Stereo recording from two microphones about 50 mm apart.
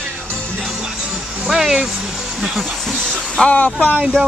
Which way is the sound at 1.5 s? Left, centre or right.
Centre.